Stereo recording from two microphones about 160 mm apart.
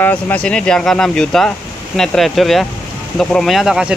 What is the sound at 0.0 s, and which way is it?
Speech, 10° left (ahead or behind).